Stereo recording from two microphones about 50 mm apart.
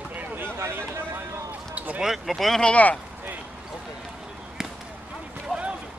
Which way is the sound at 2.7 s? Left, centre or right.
Left.